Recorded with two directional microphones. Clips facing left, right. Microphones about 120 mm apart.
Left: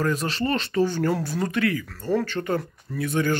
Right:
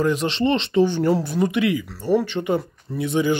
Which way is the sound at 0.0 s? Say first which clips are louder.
Right 5 dB; 20° right (ahead or behind).